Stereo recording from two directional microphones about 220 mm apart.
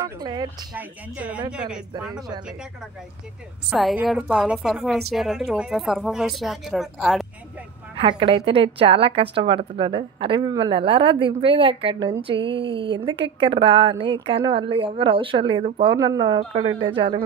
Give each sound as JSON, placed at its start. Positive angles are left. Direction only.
{"t": 0.0, "sound": "a sound", "side_deg": -20}
{"t": 0.7, "sound": "speech", "side_deg": -5}
{"t": 2.1, "sound": "a woman's voice", "side_deg": -20}
{"t": 3.7, "sound": "a woman's voice", "side_deg": 0}
{"t": 7.9, "sound": "a woman's voice", "side_deg": -25}